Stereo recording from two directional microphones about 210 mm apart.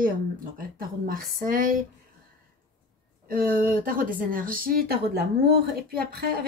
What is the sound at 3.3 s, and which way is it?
Speech, 45° right (ahead or behind).